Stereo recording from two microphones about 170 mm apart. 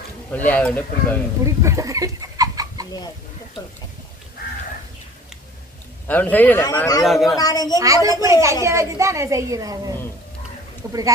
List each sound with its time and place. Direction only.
0.3 s speech: 10° left (ahead or behind)
1.4 s speech: 20° right (ahead or behind)
6.0 s speech: 10° left (ahead or behind)
6.6 s a man's voice: 20° left (ahead or behind)
7.1 s a man's voice: centre (ahead or behind)
7.3 s a man's voice: 20° left (ahead or behind)
7.8 s a woman's voice: 20° right (ahead or behind)